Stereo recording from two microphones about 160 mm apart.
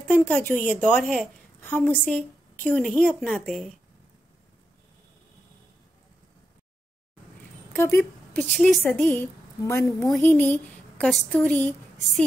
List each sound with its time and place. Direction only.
0.1 s a woman's voice: 10° left (ahead or behind)
7.7 s a woman's voice: 15° left (ahead or behind)